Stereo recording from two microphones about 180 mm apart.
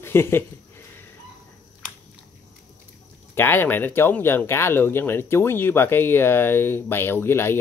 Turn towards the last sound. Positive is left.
turn(degrees=10)  # may be behind; listen again after turning